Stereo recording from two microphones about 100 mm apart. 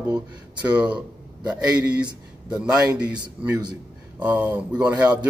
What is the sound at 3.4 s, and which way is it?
Speech, 15° right (ahead or behind).